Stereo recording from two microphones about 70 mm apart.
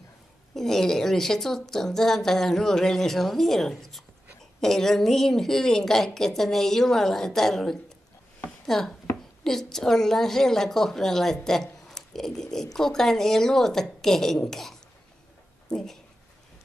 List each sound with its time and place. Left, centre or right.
0.6 s a woman's voice: centre